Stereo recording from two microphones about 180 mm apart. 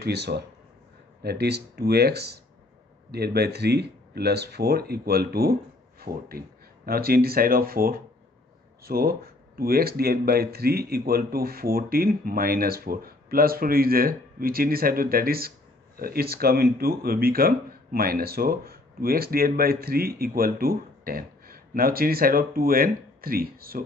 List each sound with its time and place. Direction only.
0.0 s speech: 65° right (ahead or behind)